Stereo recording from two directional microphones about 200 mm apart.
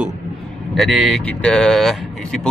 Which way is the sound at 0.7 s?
Centre (ahead or behind).